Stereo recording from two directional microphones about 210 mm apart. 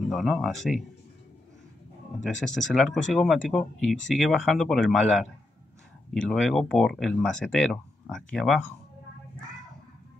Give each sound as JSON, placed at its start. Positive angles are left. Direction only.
{"t": 0.1, "sound": "speech", "side_deg": 0}
{"t": 2.2, "sound": "speech", "side_deg": 0}